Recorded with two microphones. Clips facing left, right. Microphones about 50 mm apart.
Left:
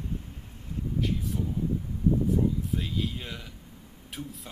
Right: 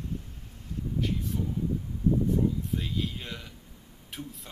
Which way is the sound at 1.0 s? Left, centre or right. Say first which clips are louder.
Left 1 dB; centre.